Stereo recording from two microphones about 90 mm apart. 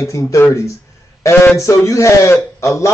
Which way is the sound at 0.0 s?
35° left (ahead or behind).